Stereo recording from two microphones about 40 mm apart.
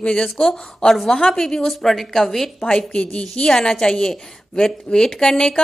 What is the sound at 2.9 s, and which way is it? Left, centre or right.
A woman's voice, left.